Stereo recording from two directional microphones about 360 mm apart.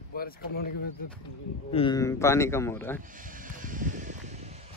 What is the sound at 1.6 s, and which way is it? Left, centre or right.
A man's voice, centre.